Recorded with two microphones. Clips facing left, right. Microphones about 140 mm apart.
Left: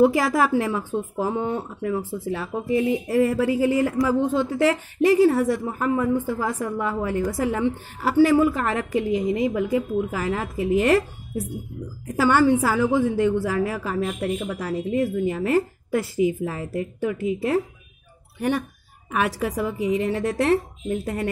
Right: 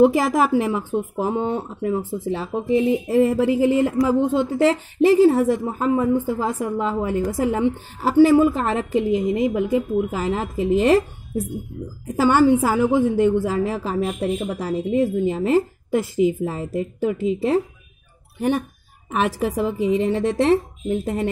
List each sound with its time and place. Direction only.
0.0 s a woman's voice: 20° right (ahead or behind)
5.3 s a woman's voice: 15° right (ahead or behind)
12.2 s a woman's voice: 15° right (ahead or behind)
19.0 s a woman's voice: 25° right (ahead or behind)
20.9 s speech: 15° right (ahead or behind)